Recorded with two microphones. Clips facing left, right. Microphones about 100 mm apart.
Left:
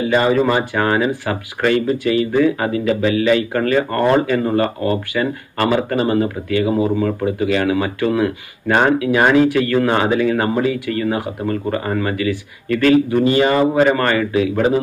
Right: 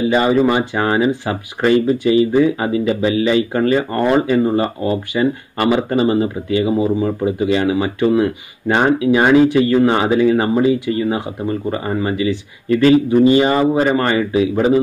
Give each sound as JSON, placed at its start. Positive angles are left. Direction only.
{"t": 0.1, "sound": "speech", "side_deg": -20}